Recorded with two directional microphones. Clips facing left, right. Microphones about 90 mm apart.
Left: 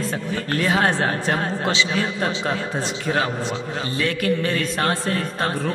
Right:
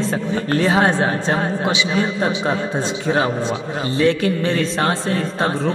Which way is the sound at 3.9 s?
25° right (ahead or behind).